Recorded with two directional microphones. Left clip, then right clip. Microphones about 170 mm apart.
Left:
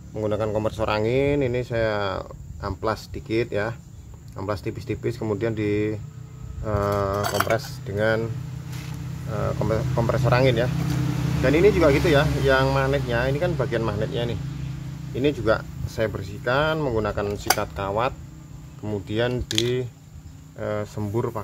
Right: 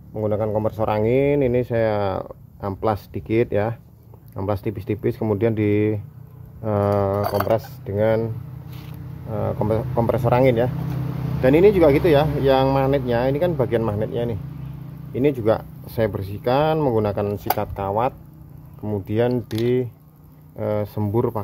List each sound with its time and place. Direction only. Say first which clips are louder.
0.1 s speech: right 2 dB; 25° right (ahead or behind); by 8.3 s 45° right (ahead or behind)
9.3 s speech: right 3 dB; 40° right (ahead or behind)
11.4 s speech: right 4 dB; 55° right (ahead or behind); by 14.4 s 35° right (ahead or behind)
15.1 s speech: right 3 dB; 45° right (ahead or behind)
17.3 s speech: even; 40° right (ahead or behind)
20.5 s speech: right 4 dB; 55° right (ahead or behind)